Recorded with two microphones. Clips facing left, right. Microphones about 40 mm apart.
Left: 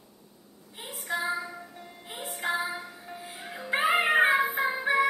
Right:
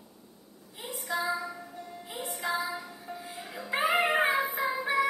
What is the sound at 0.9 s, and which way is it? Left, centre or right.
Female singing, left.